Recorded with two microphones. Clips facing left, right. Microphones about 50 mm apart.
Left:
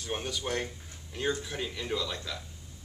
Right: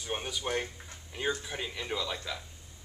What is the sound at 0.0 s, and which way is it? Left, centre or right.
Speech, centre.